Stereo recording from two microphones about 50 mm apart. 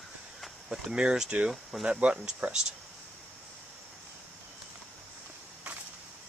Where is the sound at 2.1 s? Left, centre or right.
Centre.